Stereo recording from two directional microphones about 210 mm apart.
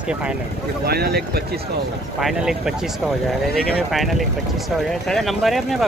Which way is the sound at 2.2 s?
Centre (ahead or behind).